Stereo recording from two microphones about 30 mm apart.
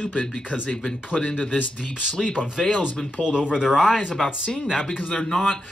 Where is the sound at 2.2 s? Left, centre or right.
Left.